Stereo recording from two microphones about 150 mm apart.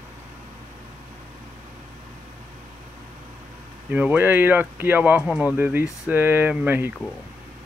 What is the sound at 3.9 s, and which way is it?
Speech, 10° right (ahead or behind).